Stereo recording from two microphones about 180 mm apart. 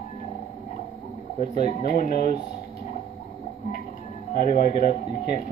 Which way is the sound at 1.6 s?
50° left (ahead or behind).